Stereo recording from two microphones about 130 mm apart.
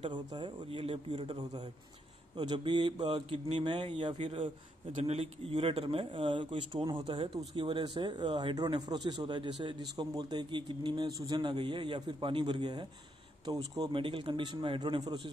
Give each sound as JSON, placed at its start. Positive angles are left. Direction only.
{"t": 0.1, "sound": "speech", "side_deg": -35}
{"t": 5.0, "sound": "speech", "side_deg": -55}
{"t": 13.9, "sound": "speech", "side_deg": -40}
{"t": 15.0, "sound": "speech", "side_deg": -30}